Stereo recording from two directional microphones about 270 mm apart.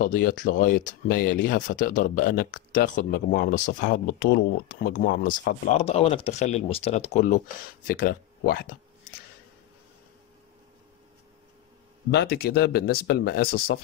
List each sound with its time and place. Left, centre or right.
0.0 s speech: left
12.1 s speech: left